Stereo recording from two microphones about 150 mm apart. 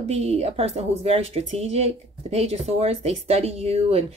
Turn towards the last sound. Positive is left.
turn(degrees=-45)  # may be behind; listen again after turning